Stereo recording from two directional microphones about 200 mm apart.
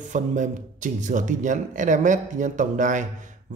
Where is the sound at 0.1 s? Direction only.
40° right (ahead or behind).